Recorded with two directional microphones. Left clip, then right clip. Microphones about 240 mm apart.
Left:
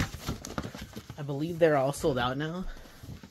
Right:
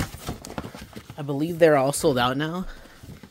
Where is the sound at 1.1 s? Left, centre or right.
Right.